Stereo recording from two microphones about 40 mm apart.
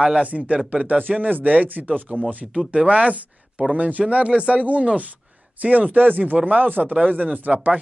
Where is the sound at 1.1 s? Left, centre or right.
Right.